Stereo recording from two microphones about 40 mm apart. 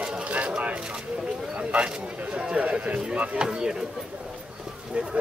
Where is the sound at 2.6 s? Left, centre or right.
Right.